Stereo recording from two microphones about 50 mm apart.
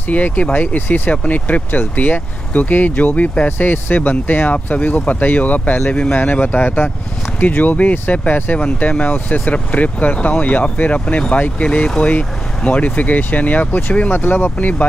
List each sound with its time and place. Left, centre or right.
0.1 s speech: left